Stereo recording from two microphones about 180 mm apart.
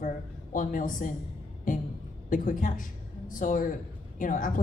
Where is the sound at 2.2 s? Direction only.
45° left (ahead or behind).